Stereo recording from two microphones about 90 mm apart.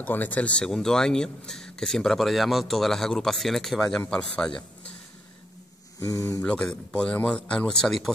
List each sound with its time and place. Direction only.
0.0 s speech: 20° left (ahead or behind)
5.9 s speech: 40° left (ahead or behind)
6.4 s speech: 10° left (ahead or behind)